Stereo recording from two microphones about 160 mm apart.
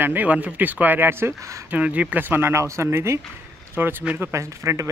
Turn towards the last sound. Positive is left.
turn(degrees=-20)  # may be behind; listen again after turning